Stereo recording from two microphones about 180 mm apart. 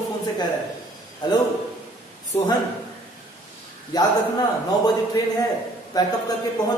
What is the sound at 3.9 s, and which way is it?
Speech, 20° left (ahead or behind).